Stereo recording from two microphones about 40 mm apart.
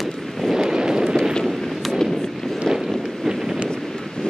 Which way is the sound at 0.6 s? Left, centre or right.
Centre.